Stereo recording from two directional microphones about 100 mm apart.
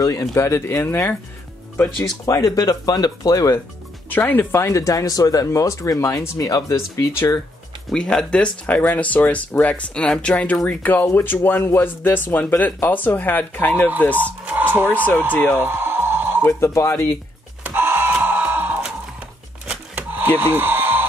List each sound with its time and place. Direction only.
0.0 s speech: 35° left (ahead or behind)
2.2 s speech: 35° left (ahead or behind)
4.1 s speech: 20° left (ahead or behind); by 7.1 s 35° left (ahead or behind)
7.1 s speech: 25° left (ahead or behind)
7.9 s speech: 5° left (ahead or behind)
14.4 s a sound: 20° right (ahead or behind)
15.3 s speech: 15° left (ahead or behind)
15.6 s a sound: 25° right (ahead or behind)
16.4 s speech: 25° left (ahead or behind)
17.6 s a sound: 20° right (ahead or behind)